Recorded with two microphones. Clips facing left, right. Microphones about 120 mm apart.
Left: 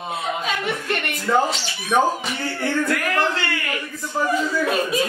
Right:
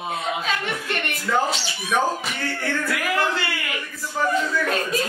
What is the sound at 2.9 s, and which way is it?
Speech, 5° right (ahead or behind).